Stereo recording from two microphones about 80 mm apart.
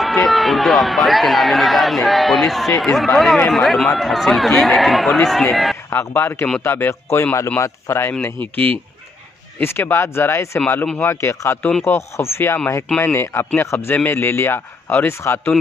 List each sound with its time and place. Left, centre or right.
0.0 s a man's voice: centre
5.9 s speech: left
8.2 s speech: left